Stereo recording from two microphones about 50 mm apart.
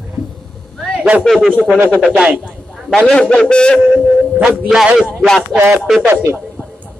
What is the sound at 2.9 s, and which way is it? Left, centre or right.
Speech, centre.